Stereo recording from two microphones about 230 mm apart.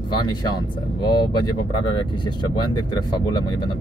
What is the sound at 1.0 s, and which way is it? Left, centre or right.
Speech, centre.